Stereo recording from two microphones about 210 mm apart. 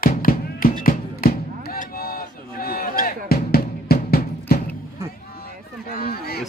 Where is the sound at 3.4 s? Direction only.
45° left (ahead or behind).